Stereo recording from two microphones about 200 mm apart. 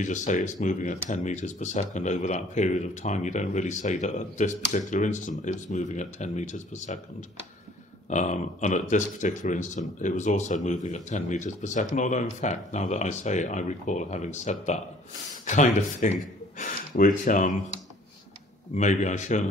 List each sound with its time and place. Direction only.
0.0 s speech: 35° left (ahead or behind)
18.8 s speech: 35° left (ahead or behind)